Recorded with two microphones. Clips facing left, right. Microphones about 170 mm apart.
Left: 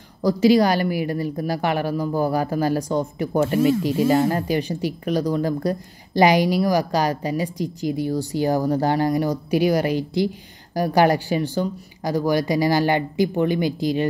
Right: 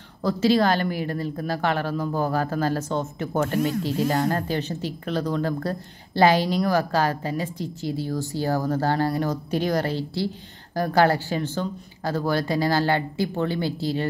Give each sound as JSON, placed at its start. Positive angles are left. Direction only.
{"t": 0.2, "sound": "a woman's voice", "side_deg": 15}